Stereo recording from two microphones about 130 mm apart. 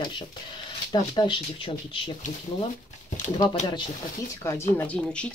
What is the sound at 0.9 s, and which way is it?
Speech, 35° left (ahead or behind).